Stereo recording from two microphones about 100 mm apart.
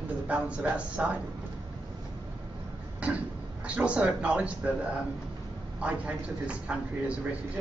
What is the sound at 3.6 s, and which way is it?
Speech, 10° right (ahead or behind).